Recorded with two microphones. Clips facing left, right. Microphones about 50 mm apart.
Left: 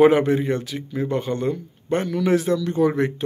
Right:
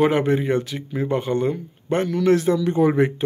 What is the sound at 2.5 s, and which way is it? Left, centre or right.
Speech, centre.